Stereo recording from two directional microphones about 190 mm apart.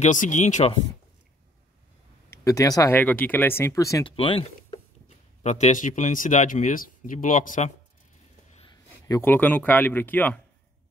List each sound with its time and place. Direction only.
0.0 s speech: 40° left (ahead or behind)
2.3 s speech: 15° left (ahead or behind)
4.2 s speech: 30° left (ahead or behind)
9.0 s speech: 15° left (ahead or behind)